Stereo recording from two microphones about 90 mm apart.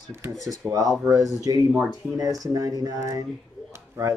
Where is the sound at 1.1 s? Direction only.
40° right (ahead or behind).